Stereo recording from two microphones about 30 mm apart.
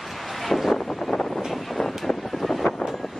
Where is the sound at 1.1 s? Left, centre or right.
Left.